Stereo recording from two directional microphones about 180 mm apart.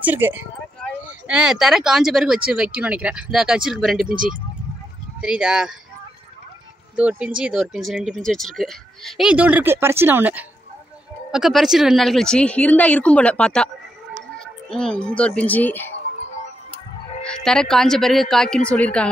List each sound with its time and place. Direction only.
0.0 s speech: 10° right (ahead or behind)
4.0 s speech: 50° right (ahead or behind)
5.2 s speech: 5° right (ahead or behind)
7.0 s speech: 5° right (ahead or behind); by 15.9 s 10° left (ahead or behind)
17.2 s speech: 5° left (ahead or behind)